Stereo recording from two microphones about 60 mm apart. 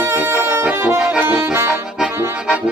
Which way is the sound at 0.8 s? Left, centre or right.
Right.